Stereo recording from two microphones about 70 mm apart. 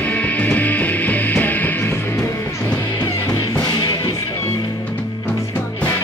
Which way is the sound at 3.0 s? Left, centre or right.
Left.